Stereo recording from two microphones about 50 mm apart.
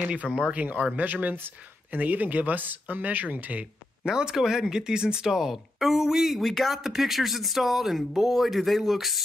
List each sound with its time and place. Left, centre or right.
0.0 s speech: right
4.1 s speech: centre